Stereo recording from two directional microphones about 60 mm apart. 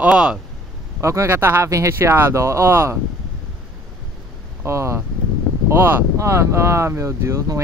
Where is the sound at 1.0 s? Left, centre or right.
Right.